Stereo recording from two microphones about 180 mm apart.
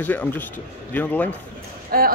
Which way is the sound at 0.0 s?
10° left (ahead or behind).